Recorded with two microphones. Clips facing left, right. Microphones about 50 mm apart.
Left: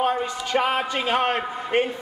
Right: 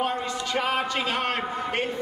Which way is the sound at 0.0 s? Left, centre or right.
Centre.